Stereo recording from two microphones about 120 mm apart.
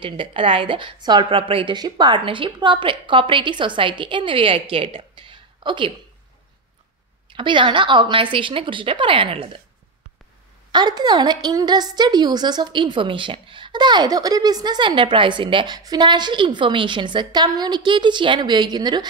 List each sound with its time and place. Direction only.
0.0 s a woman's voice: 45° right (ahead or behind)
7.2 s a woman's voice: 40° right (ahead or behind)
10.7 s a woman's voice: 35° right (ahead or behind)